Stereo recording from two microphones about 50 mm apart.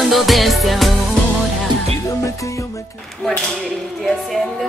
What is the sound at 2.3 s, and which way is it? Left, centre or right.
Music, left.